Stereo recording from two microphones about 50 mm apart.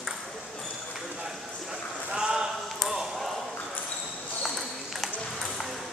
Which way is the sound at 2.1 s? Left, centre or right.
Centre.